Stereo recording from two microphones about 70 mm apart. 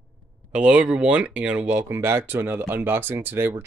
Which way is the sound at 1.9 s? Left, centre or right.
Right.